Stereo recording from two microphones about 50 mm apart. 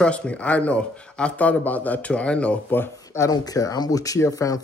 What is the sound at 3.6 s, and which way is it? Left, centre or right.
Speech, left.